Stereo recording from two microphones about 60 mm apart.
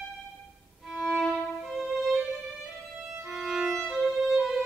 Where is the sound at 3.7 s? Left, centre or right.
Centre.